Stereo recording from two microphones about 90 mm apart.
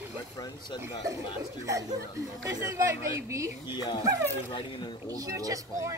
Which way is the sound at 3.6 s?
55° left (ahead or behind).